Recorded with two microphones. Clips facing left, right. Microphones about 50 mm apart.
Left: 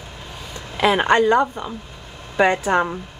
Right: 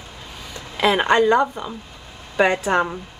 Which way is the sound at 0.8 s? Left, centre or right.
Centre.